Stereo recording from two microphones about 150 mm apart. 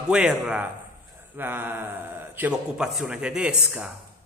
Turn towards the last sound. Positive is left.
turn(degrees=-5)  # may be behind; listen again after turning